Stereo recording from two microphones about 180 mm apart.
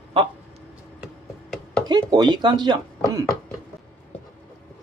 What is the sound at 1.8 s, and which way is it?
Speech, 20° right (ahead or behind).